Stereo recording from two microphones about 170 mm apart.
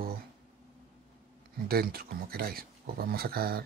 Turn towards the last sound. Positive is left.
turn(degrees=-65)  # may be behind; listen again after turning